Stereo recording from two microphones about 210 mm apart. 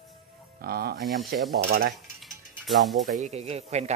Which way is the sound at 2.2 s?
Centre (ahead or behind).